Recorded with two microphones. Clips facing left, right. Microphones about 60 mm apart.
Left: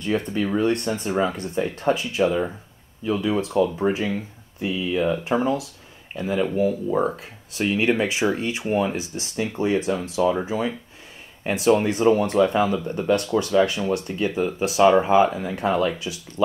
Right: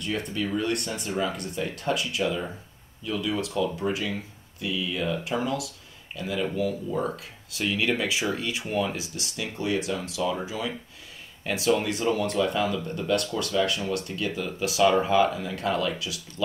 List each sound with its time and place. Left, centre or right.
0.0 s speech: left